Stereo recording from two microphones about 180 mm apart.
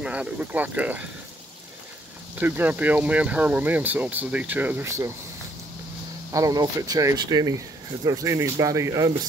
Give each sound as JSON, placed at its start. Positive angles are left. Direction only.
{"t": 0.0, "sound": "speech", "side_deg": -5}
{"t": 2.3, "sound": "speech", "side_deg": -10}
{"t": 6.3, "sound": "speech", "side_deg": -20}